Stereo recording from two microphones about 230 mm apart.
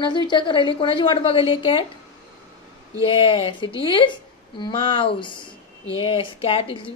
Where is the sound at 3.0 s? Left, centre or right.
Left.